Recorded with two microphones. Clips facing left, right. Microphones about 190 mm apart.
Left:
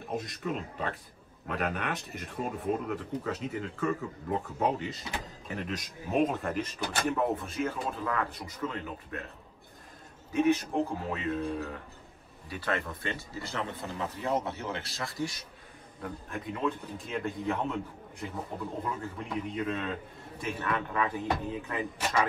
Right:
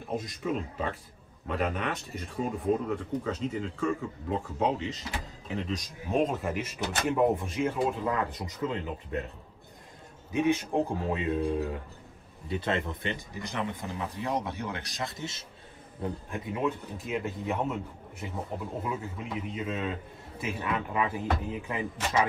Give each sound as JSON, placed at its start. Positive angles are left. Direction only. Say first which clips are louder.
{"t": 0.1, "sound": "speech", "louder": "right 2 dB", "side_deg": 0}
{"t": 10.3, "sound": "speech", "louder": "even", "side_deg": -15}